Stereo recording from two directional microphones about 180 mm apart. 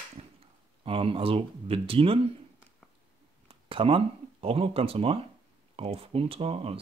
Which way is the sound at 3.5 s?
30° right (ahead or behind).